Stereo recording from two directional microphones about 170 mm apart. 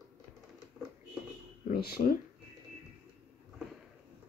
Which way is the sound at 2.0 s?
60° left (ahead or behind).